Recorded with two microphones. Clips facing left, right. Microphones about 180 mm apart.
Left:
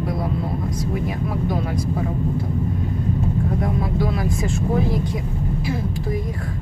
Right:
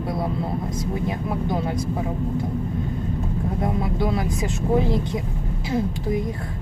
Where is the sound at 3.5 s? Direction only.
25° right (ahead or behind).